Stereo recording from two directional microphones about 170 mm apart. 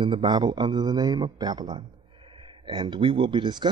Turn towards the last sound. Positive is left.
turn(degrees=-25)  # may be behind; listen again after turning